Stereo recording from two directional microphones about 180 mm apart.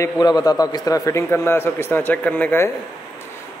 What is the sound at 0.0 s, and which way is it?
A man's voice, 20° left (ahead or behind).